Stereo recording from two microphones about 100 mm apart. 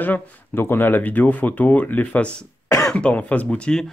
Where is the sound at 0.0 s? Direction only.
20° left (ahead or behind).